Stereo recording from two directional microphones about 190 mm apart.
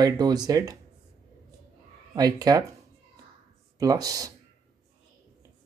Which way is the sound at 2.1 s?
20° right (ahead or behind).